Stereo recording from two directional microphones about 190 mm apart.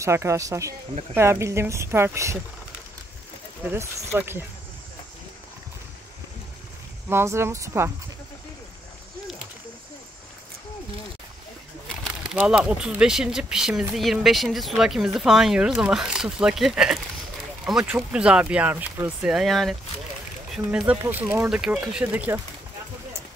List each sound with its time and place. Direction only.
0.0 s speech: 15° right (ahead or behind)
3.7 s speech: 15° right (ahead or behind)
7.1 s speech: 15° right (ahead or behind)
12.0 s speech: 5° right (ahead or behind)